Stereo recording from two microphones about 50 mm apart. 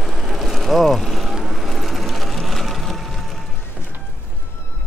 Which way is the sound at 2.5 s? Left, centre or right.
Centre.